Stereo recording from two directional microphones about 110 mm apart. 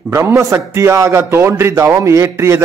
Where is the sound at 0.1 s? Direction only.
25° right (ahead or behind).